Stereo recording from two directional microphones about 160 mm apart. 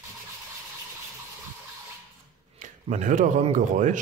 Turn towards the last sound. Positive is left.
turn(degrees=-50)  # may be behind; listen again after turning